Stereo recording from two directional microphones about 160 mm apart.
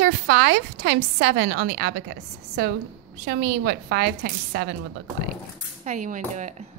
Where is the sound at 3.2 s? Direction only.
70° right (ahead or behind); by 4.7 s 90° right.